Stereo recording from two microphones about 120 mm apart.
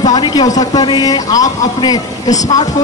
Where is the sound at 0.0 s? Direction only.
35° left (ahead or behind).